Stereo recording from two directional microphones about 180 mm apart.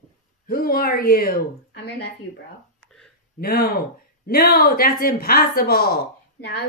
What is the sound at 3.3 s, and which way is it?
Speech, 55° left (ahead or behind).